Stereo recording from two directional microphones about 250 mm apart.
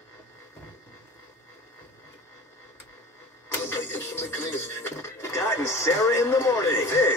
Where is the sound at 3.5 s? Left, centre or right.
Centre.